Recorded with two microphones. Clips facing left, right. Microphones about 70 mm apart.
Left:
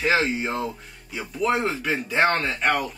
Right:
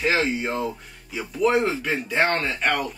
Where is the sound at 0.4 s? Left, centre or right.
Centre.